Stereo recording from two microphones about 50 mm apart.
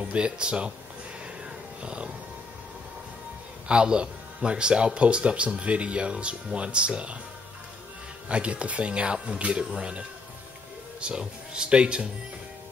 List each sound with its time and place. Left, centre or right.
0.0 s speech: right
1.8 s music: right
3.6 s speech: centre
8.3 s speech: right